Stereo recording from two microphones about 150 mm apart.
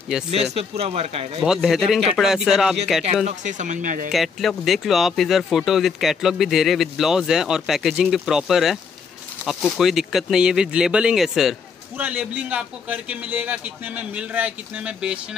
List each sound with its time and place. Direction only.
0.3 s speech: 45° right (ahead or behind)
1.4 s speech: 5° right (ahead or behind)
3.3 s speech: 55° right (ahead or behind)
4.1 s a man's voice: centre (ahead or behind)